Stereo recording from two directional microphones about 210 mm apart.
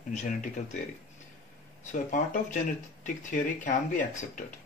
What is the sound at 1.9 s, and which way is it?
Speech, 40° left (ahead or behind).